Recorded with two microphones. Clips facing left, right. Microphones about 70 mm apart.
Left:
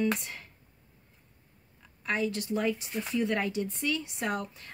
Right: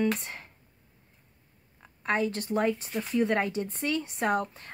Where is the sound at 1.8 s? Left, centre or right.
Right.